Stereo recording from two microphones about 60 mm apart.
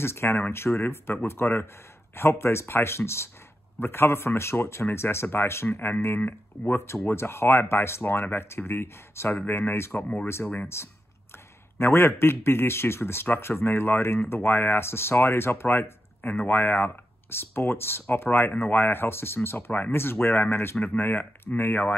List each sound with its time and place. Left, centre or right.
0.0 s a man's voice: left
7.1 s a man's voice: left
9.9 s speech: left
10.2 s a man's voice: left